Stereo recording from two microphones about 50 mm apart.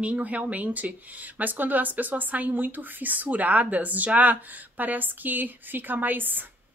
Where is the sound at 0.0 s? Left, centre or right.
Right.